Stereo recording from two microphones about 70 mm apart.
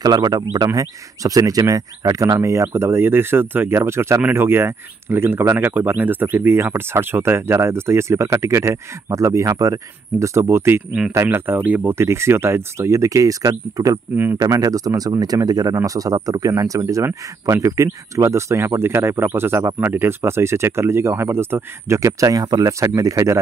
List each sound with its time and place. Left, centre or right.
0.0 s speech: right
11.9 s speech: right
14.1 s speech: right
14.4 s speech: right